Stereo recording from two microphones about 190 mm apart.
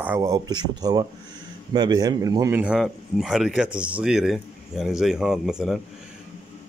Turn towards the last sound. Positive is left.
turn(degrees=0)  # may be behind; listen again after turning